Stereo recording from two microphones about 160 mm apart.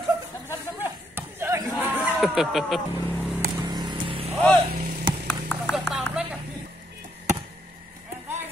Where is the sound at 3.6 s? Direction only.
25° right (ahead or behind).